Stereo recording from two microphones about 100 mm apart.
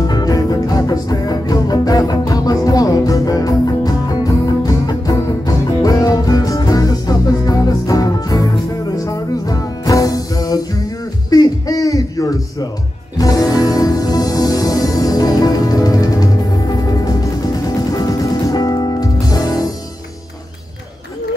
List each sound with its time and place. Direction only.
0.0 s music: 40° left (ahead or behind)
11.2 s a sound: 40° left (ahead or behind)
13.2 s music: 35° left (ahead or behind)